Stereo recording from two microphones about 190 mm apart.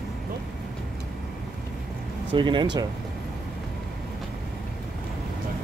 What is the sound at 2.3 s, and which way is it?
Speech, 25° right (ahead or behind).